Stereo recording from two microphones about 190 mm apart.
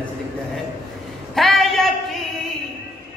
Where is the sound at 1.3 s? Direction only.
Centre (ahead or behind).